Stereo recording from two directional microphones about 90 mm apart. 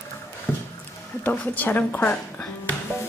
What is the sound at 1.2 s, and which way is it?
Speech, 20° left (ahead or behind).